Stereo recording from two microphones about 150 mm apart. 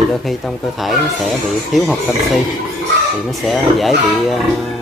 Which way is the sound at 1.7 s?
Centre (ahead or behind).